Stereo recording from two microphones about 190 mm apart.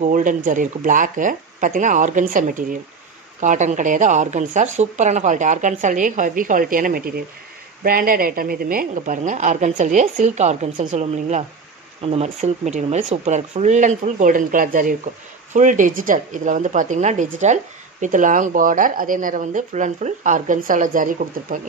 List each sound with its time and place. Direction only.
0.0 s a woman's voice: 45° right (ahead or behind)